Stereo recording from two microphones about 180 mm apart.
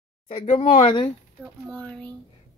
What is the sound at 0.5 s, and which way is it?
Speech, 35° left (ahead or behind).